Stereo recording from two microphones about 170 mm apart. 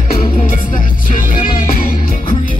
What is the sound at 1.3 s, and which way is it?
Music, 30° left (ahead or behind).